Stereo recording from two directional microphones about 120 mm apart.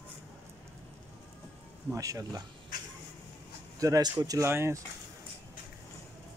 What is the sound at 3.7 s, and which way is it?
Speech, 30° right (ahead or behind).